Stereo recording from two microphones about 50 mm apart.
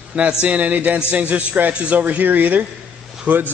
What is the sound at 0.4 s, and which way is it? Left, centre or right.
A man's voice, right.